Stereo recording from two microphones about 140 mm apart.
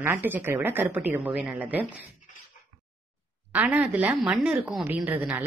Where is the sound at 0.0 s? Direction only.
15° right (ahead or behind).